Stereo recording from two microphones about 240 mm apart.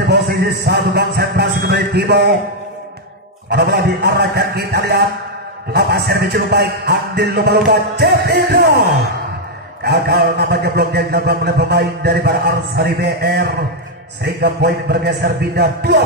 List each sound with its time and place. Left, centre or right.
0.0 s a sound: right
3.4 s speech: right
9.8 s speech: right